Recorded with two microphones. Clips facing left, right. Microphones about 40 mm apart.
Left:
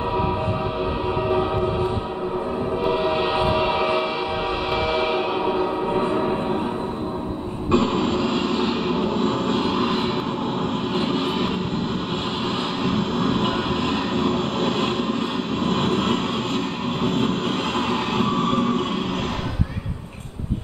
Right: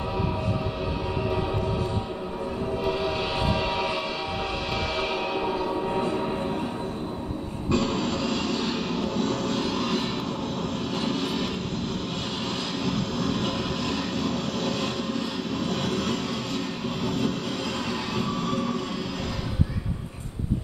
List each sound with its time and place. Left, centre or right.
2.8 s a sound: left
4.9 s music: left
7.7 s vehicle: left
12.8 s vehicle: left
17.7 s music: left